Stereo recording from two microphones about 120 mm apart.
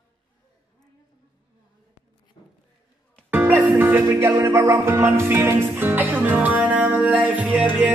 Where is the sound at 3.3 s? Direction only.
15° right (ahead or behind).